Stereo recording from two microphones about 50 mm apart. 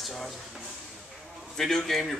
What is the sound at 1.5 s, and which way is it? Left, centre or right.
Speech, centre.